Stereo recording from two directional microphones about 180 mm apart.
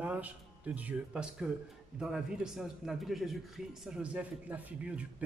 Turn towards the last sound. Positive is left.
turn(degrees=-5)  # may be behind; listen again after turning